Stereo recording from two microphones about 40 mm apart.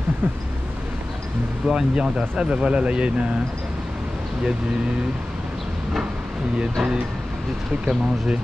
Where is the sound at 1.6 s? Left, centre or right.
Centre.